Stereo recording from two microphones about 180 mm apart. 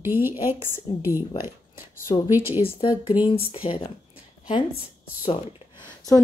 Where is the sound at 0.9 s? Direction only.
25° left (ahead or behind).